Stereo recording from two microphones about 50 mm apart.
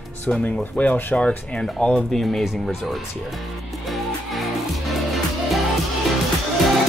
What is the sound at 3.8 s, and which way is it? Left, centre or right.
Music, centre.